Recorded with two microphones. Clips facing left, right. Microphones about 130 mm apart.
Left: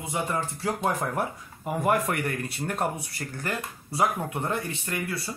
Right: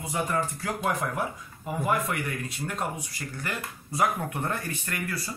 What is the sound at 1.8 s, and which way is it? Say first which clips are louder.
Speech: left 3 dB; 60° left (ahead or behind).